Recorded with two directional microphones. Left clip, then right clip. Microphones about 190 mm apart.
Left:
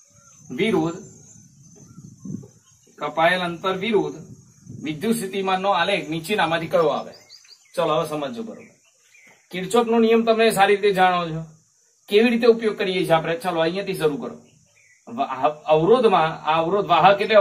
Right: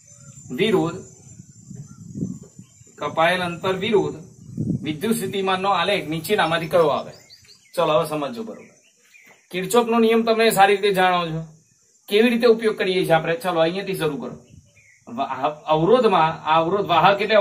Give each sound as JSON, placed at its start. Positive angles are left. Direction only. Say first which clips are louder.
{"t": 0.6, "sound": "a man's voice", "louder": "right 2 dB", "side_deg": -10}
{"t": 3.0, "sound": "a man's voice", "louder": "even", "side_deg": -10}
{"t": 5.3, "sound": "a man's voice", "louder": "even", "side_deg": -10}
{"t": 9.5, "sound": "a man's voice", "louder": "right 1 dB", "side_deg": -15}